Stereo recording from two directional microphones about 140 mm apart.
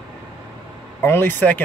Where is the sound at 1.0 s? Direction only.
15° left (ahead or behind).